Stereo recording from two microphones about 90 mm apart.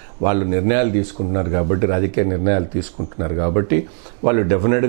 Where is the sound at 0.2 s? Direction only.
20° right (ahead or behind).